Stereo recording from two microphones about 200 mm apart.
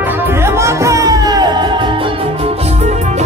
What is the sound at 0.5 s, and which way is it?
Music, 15° right (ahead or behind).